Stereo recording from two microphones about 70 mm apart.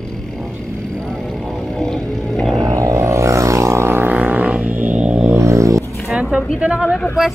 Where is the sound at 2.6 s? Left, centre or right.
Right.